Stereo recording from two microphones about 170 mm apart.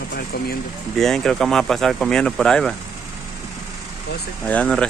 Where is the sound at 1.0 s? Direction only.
Centre (ahead or behind).